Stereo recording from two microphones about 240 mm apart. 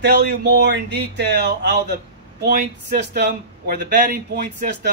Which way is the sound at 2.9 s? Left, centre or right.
Right.